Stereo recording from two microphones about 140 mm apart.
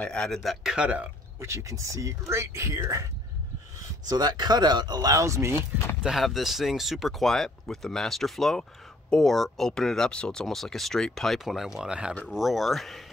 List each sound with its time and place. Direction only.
0.0 s speech: 5° left (ahead or behind)
1.4 s speech: 20° right (ahead or behind)
4.1 s speech: 30° right (ahead or behind)
6.0 s speech: centre (ahead or behind)